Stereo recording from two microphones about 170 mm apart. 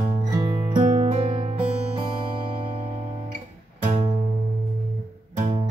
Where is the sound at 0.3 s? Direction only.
25° right (ahead or behind).